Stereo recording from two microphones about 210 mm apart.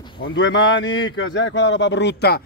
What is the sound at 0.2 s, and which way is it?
A man's voice, 60° left (ahead or behind).